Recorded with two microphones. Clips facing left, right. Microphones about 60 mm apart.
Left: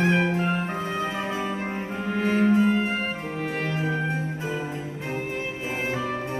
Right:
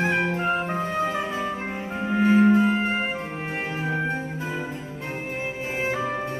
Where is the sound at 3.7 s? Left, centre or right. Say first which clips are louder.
Even; right.